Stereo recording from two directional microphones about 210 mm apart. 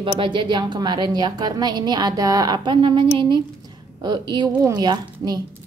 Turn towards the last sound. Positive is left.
turn(degrees=-20)  # may be behind; listen again after turning